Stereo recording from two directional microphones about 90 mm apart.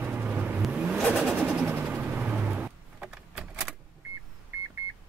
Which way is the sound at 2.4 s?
15° right (ahead or behind).